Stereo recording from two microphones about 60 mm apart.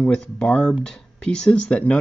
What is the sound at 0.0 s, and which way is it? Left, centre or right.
Speech, centre.